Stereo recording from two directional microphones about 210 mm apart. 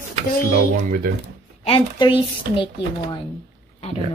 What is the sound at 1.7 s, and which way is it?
Speech, 25° left (ahead or behind).